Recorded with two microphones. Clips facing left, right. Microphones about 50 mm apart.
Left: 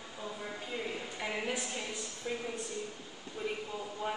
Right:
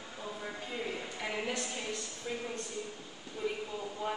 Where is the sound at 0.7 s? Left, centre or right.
Centre.